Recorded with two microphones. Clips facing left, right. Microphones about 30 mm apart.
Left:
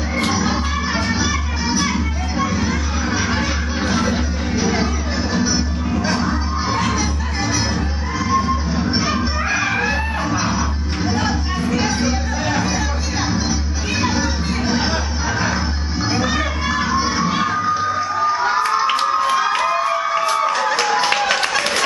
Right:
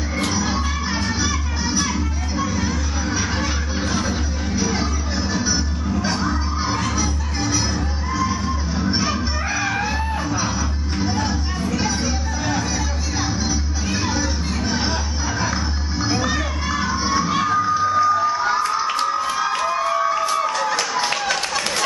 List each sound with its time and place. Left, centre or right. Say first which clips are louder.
0.2 s music: left 3 dB; centre
6.8 s music: left 3 dB; centre
15.4 s children playing: left 3 dB; centre
18.6 s music: left 3 dB; left